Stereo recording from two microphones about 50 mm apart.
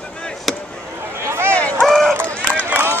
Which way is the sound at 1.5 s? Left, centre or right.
Left.